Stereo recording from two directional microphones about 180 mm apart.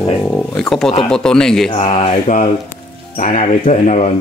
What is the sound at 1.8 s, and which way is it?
Mantra, 35° left (ahead or behind).